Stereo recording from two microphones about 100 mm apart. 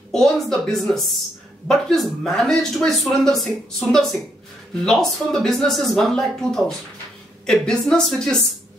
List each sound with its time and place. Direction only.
0.1 s a woman's voice: 5° left (ahead or behind)